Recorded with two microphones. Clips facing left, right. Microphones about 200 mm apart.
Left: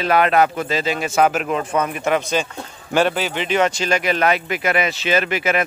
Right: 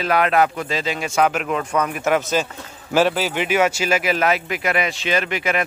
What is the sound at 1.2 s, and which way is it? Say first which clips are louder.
Speech: left 1 dB; 40° left (ahead or behind).